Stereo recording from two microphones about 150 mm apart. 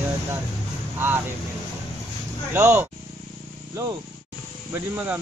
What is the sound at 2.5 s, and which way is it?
Speech, 15° right (ahead or behind).